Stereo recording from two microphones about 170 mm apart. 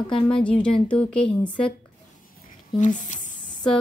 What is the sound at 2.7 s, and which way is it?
Speech, 45° left (ahead or behind).